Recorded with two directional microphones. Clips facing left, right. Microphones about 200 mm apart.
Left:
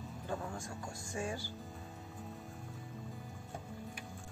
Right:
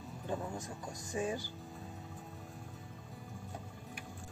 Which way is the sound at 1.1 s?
20° right (ahead or behind).